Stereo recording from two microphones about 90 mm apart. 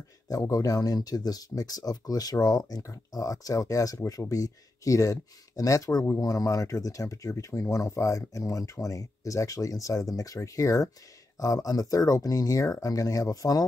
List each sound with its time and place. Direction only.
0.3 s speech: 40° left (ahead or behind)